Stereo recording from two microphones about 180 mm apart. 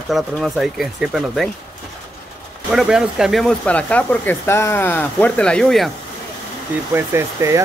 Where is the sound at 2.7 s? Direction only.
5° right (ahead or behind).